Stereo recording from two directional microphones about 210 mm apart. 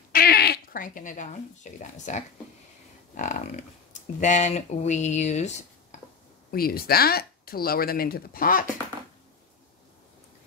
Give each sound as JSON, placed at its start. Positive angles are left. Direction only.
{"t": 0.1, "sound": "speech", "side_deg": 45}
{"t": 6.5, "sound": "speech", "side_deg": 45}